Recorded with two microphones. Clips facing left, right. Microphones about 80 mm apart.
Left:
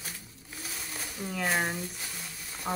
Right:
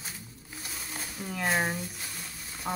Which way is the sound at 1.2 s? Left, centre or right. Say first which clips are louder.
Right 1 dB; centre.